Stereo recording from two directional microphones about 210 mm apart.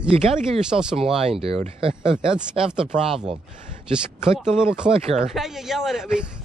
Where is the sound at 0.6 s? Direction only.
5° right (ahead or behind).